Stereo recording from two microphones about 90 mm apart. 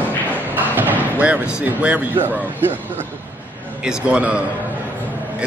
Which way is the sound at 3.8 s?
10° right (ahead or behind).